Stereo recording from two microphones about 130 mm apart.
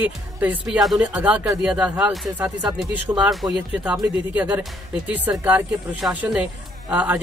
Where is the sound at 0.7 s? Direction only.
Centre (ahead or behind).